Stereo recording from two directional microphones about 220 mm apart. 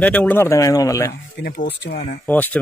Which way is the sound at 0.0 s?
5° left (ahead or behind).